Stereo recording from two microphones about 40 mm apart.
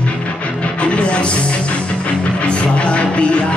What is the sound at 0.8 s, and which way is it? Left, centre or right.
Music, left.